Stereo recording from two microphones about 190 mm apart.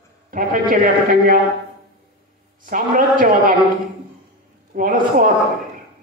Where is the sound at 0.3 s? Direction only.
45° right (ahead or behind).